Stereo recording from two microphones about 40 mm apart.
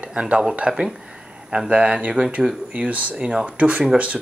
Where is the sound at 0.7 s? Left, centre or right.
Centre.